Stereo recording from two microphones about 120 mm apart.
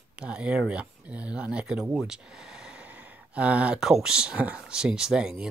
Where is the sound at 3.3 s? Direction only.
10° right (ahead or behind).